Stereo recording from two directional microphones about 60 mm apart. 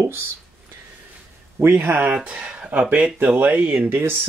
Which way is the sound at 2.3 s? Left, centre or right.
Centre.